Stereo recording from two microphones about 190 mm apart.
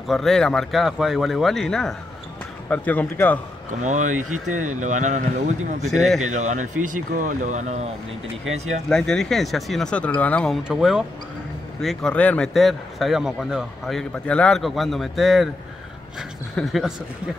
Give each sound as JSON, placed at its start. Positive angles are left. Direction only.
{"t": 0.1, "sound": "speech", "side_deg": 0}
{"t": 3.8, "sound": "speech", "side_deg": -40}
{"t": 5.9, "sound": "speech", "side_deg": 0}
{"t": 6.3, "sound": "speech", "side_deg": -40}
{"t": 8.8, "sound": "speech", "side_deg": 5}